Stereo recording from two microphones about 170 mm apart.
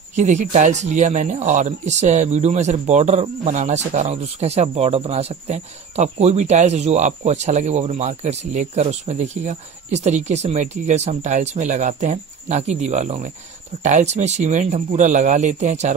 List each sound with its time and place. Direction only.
0.1 s speech: 45° right (ahead or behind)